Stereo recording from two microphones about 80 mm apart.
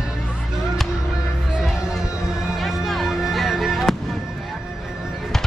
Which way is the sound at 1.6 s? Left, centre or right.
Centre.